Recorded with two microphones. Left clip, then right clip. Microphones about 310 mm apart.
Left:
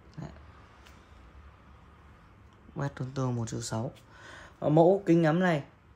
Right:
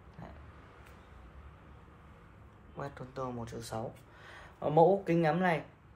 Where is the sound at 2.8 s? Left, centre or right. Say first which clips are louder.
Left 4 dB; left.